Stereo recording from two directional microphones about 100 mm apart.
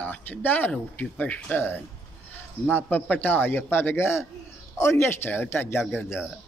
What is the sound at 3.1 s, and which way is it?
Speech, 20° left (ahead or behind).